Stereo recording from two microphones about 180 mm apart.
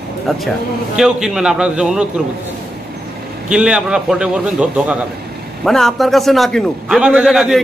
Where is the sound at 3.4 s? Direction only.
5° right (ahead or behind).